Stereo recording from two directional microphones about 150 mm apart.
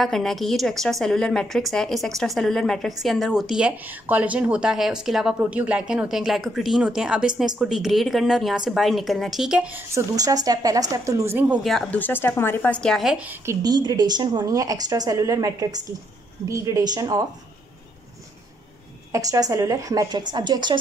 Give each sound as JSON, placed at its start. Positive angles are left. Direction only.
{"t": 0.0, "sound": "speech", "side_deg": 0}
{"t": 9.9, "sound": "speech", "side_deg": -25}
{"t": 13.6, "sound": "a woman's voice", "side_deg": -25}
{"t": 19.1, "sound": "a woman's voice", "side_deg": -20}